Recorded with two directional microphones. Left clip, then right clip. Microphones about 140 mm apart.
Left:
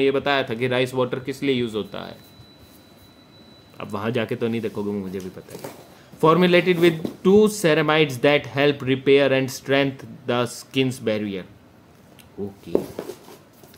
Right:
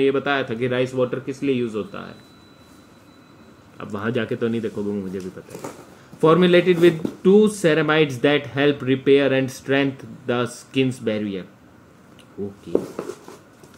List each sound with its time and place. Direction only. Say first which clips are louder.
0.0 s speech: even; 45° left (ahead or behind); by 2.0 s 70° left (ahead or behind)
3.7 s speech: even; 40° left (ahead or behind)
6.2 s speech: right 1 dB; 40° left (ahead or behind)